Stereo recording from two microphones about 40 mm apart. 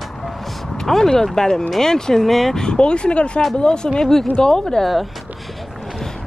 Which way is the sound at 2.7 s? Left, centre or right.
Left.